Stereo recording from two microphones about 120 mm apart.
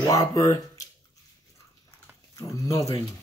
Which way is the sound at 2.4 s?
25° left (ahead or behind).